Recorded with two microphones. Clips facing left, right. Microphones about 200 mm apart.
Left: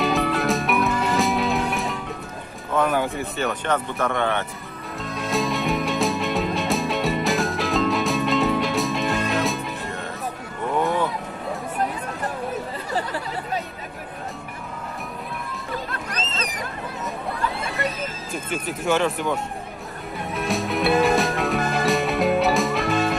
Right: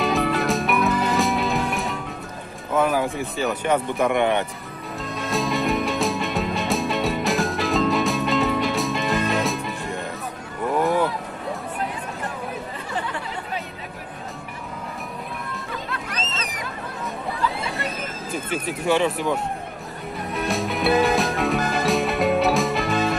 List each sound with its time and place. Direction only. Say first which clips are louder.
0.0 s music: even; centre (ahead or behind)
2.7 s speech: right 1 dB; 5° right (ahead or behind)
5.0 s music: left 1 dB; centre (ahead or behind)
12.9 s a sound: left 3 dB; 35° left (ahead or behind)
15.9 s music: even; 40° left (ahead or behind)
18.3 s speech: right 3 dB; centre (ahead or behind)
20.3 s music: left 1 dB; centre (ahead or behind)